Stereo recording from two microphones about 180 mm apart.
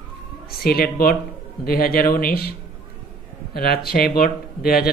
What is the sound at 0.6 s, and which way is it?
Speech, 55° left (ahead or behind).